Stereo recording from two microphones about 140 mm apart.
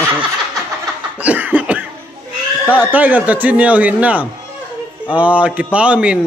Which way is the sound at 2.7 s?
10° right (ahead or behind).